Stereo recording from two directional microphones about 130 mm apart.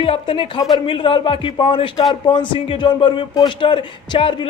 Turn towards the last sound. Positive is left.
turn(degrees=40)  # may be behind; listen again after turning